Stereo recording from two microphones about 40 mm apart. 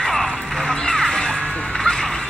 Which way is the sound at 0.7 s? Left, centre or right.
Centre.